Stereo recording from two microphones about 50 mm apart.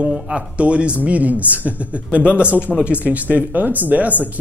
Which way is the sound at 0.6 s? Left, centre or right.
Right.